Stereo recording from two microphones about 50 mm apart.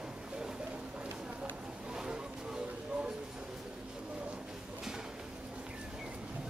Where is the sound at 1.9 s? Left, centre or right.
Centre.